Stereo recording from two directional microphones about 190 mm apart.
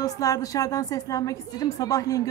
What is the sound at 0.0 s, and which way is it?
A woman's voice, 15° left (ahead or behind).